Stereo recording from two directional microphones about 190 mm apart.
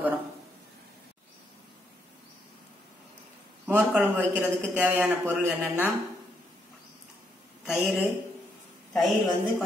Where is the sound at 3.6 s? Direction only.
10° right (ahead or behind).